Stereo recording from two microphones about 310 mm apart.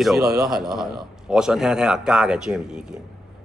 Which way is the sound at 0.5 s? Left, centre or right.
Centre.